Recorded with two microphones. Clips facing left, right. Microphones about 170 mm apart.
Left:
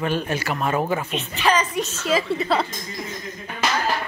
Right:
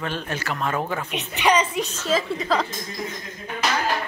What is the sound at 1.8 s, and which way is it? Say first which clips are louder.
Speech: left 1 dB; 10° left (ahead or behind).